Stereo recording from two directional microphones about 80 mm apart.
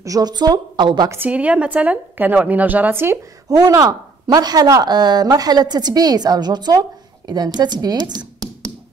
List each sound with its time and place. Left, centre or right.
0.0 s a woman's voice: right
1.1 s a woman's voice: right
3.4 s a woman's voice: right